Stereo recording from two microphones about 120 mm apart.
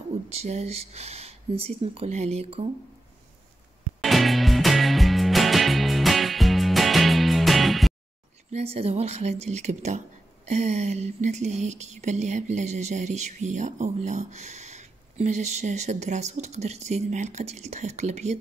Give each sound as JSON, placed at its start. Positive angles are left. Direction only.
{"t": 0.3, "sound": "speech", "side_deg": -60}
{"t": 4.0, "sound": "music", "side_deg": 0}
{"t": 8.5, "sound": "speech", "side_deg": -60}
{"t": 10.5, "sound": "a sound", "side_deg": -70}